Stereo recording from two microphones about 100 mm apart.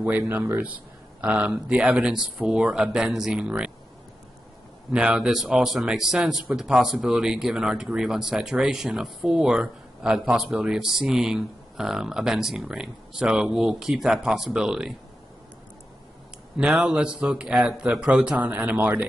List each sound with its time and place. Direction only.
0.3 s speech: 25° right (ahead or behind)
1.2 s a man's voice: 15° right (ahead or behind)
4.9 s a man's voice: 10° right (ahead or behind)
16.5 s a man's voice: 10° right (ahead or behind)